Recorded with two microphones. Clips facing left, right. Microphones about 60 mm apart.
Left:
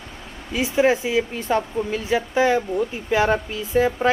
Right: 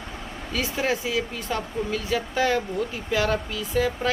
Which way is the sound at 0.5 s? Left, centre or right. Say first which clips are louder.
Left 7 dB; centre.